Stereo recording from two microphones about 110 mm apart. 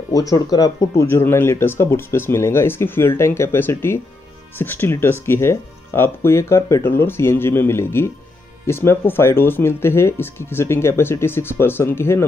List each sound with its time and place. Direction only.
0.1 s speech: 35° left (ahead or behind)